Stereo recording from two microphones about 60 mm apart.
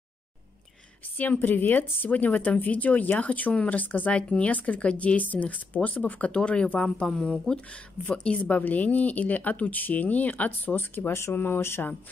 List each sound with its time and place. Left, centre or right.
1.1 s speech: left